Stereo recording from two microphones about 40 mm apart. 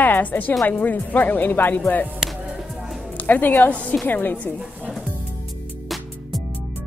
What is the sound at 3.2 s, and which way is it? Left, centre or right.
Speech, left.